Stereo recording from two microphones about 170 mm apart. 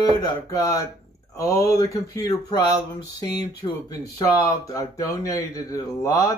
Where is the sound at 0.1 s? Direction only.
20° left (ahead or behind).